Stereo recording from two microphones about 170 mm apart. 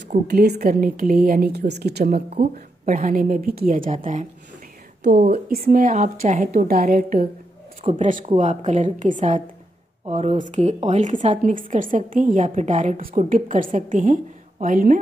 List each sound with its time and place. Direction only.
0.3 s a woman's voice: 65° right (ahead or behind)
2.3 s speech: 40° right (ahead or behind)
2.9 s a woman's voice: 55° right (ahead or behind)
5.0 s a woman's voice: 60° right (ahead or behind)